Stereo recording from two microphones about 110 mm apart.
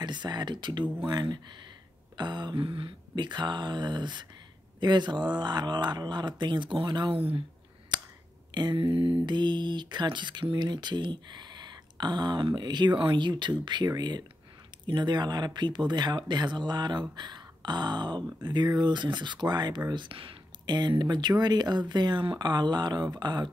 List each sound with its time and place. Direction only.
0.0 s speech: 40° right (ahead or behind)
7.2 s speech: 60° right (ahead or behind)
7.9 s a sound: 40° right (ahead or behind)
8.5 s speech: 45° right (ahead or behind)